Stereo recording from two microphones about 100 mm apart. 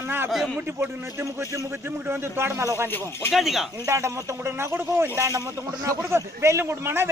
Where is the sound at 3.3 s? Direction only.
5° right (ahead or behind).